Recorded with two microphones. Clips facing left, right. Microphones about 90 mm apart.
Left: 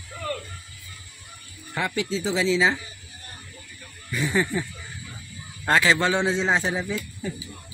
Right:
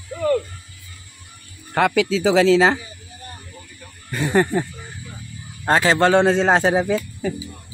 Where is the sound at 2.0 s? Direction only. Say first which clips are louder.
Right 8 dB; 90° right; by 2.8 s 65° right (ahead or behind).